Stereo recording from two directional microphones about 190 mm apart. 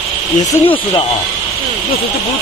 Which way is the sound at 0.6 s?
25° left (ahead or behind).